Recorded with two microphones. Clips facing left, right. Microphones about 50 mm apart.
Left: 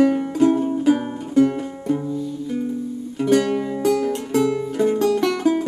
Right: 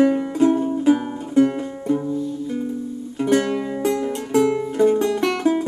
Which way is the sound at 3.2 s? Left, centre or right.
Right.